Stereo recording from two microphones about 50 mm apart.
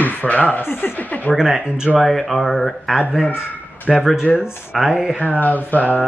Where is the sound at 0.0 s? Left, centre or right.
Left.